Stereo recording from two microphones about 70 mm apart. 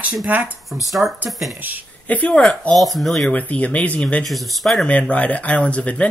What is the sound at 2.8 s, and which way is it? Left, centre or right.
Speech, centre.